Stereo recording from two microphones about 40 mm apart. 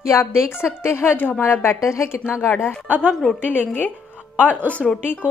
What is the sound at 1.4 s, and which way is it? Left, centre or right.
A woman's voice, left.